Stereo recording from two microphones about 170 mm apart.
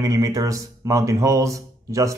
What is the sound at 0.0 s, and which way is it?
Speech, 20° right (ahead or behind).